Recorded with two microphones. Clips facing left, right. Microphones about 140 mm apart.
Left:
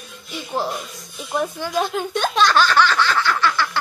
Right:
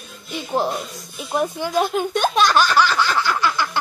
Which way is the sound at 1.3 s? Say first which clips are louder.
Right 2 dB; 15° right (ahead or behind).